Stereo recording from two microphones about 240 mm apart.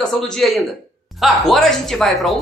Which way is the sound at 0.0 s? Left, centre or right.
Centre.